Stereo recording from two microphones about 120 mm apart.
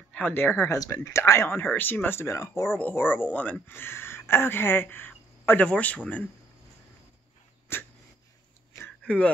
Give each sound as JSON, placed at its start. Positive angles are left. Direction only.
{"t": 0.1, "sound": "speech", "side_deg": 15}
{"t": 7.7, "sound": "speech", "side_deg": 20}
{"t": 8.7, "sound": "a sound", "side_deg": 10}